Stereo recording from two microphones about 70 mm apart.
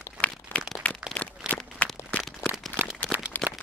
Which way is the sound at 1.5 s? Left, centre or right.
Right.